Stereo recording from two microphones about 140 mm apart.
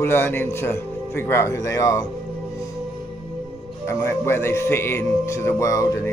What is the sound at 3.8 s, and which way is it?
Speech, 20° left (ahead or behind).